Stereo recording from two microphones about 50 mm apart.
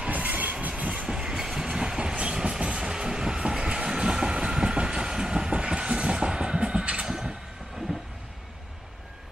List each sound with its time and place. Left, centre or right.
0.1 s train: right
1.0 s train: centre
5.5 s a sound: centre